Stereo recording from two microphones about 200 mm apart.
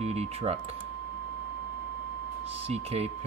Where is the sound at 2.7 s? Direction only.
30° right (ahead or behind).